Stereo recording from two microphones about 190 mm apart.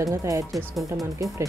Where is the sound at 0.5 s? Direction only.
Centre (ahead or behind).